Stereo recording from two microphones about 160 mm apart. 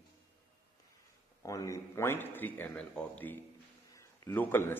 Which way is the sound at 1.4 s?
20° left (ahead or behind).